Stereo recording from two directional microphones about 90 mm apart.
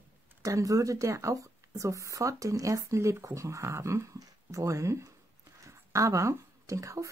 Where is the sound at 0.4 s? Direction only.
40° right (ahead or behind).